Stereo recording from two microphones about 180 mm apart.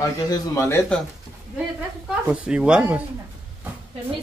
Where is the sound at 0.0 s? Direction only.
15° left (ahead or behind).